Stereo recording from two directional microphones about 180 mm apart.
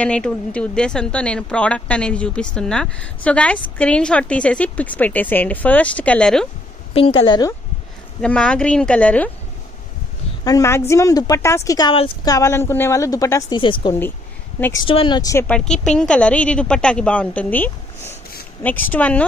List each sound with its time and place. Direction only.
0.0 s speech: 5° left (ahead or behind)
6.9 s a woman's voice: 30° left (ahead or behind)
7.2 s speech: 20° left (ahead or behind)
8.2 s speech: 5° left (ahead or behind)
10.4 s speech: 15° left (ahead or behind)
14.8 s speech: 25° left (ahead or behind)
15.3 s speech: 5° left (ahead or behind)